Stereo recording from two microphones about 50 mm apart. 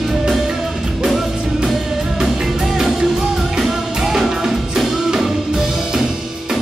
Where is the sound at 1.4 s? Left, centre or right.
Centre.